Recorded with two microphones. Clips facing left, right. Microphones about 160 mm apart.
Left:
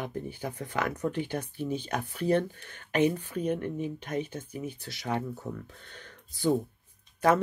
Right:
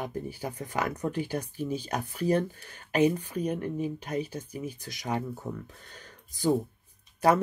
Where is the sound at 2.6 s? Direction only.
35° right (ahead or behind).